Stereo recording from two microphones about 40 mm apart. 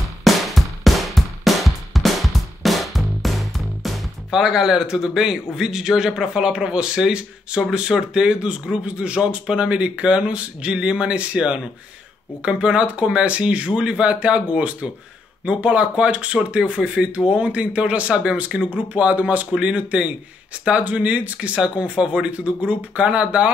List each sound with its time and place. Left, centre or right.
0.2 s music: centre
4.4 s speech: centre; by 23.5 s right